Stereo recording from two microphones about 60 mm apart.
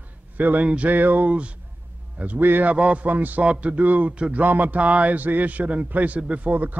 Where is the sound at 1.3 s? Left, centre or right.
Right.